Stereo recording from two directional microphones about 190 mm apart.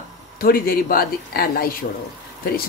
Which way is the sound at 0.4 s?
50° left (ahead or behind).